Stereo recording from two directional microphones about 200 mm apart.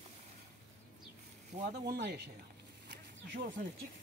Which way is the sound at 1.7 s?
55° right (ahead or behind).